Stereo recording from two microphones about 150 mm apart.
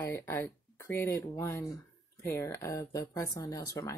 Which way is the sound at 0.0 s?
15° left (ahead or behind).